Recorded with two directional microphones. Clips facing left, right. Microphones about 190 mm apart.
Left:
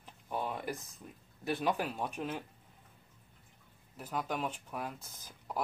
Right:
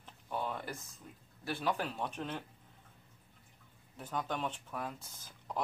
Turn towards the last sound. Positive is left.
turn(degrees=10)  # may be behind; listen again after turning